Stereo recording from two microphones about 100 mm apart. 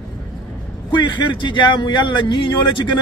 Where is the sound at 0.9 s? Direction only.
50° left (ahead or behind).